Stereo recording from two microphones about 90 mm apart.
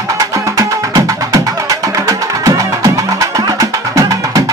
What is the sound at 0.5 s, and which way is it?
Music, 40° right (ahead or behind).